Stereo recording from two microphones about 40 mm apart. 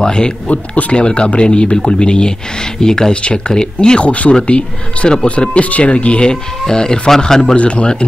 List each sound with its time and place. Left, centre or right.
0.0 s speech: left
0.5 s speech: left
4.1 s speech: left
6.6 s speech: centre
7.5 s speech: left